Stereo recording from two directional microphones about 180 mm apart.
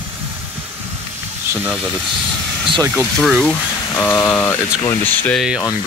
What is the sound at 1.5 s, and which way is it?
Speech, 10° right (ahead or behind).